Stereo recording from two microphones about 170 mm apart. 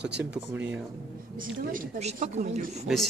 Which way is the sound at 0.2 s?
10° right (ahead or behind).